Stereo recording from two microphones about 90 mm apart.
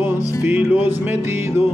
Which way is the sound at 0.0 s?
25° right (ahead or behind).